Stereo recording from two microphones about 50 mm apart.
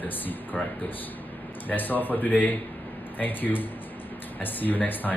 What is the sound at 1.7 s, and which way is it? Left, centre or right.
Speech, left.